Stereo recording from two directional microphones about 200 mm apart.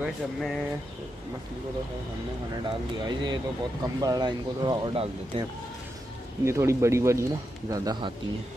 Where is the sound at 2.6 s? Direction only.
20° right (ahead or behind).